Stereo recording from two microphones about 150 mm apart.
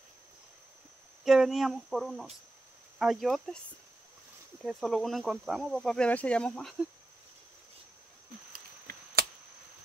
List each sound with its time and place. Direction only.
1.2 s speech: centre (ahead or behind)
4.6 s speech: centre (ahead or behind)
8.5 s chop: 90° right